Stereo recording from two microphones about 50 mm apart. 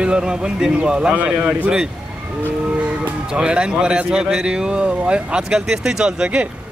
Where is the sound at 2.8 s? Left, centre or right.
Centre.